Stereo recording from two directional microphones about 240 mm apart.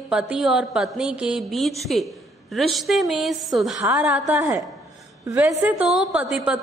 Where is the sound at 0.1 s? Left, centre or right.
Centre.